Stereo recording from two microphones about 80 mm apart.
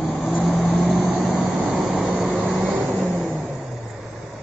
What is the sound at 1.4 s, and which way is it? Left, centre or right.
Vehicle, centre.